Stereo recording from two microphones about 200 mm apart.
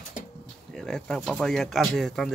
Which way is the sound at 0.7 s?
5° left (ahead or behind).